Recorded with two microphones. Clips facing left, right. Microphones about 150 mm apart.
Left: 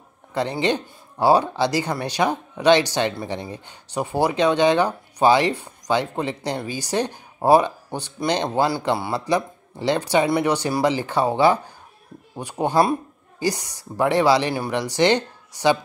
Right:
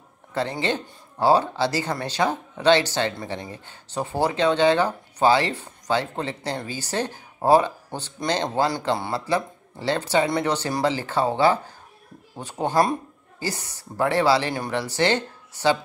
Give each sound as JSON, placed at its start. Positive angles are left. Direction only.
{"t": 0.3, "sound": "speech", "side_deg": 15}